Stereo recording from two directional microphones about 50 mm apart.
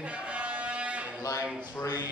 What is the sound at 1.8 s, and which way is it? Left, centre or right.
Speech, left.